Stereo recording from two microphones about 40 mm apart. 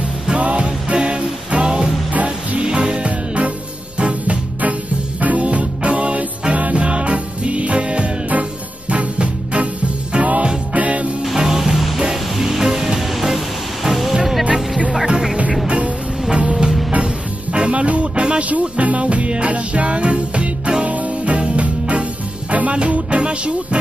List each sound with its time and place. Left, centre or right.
0.4 s music: right
2.1 s music: right
2.6 s music: right
5.2 s music: right
11.3 s music: centre
13.8 s vehicle: centre
14.1 s music: centre
15.6 s music: right
16.4 s music: centre
18.5 s music: right